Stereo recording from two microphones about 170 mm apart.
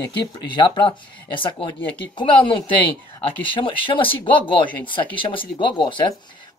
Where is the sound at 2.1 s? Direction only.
30° left (ahead or behind).